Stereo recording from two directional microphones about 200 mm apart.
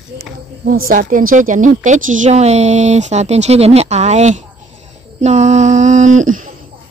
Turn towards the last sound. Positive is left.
turn(degrees=-40)  # may be behind; listen again after turning